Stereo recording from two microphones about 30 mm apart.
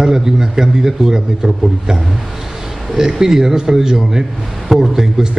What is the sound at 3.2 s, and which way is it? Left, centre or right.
A man's voice, centre.